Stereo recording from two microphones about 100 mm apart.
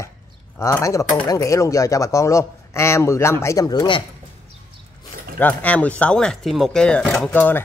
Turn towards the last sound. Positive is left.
turn(degrees=15)  # may be behind; listen again after turning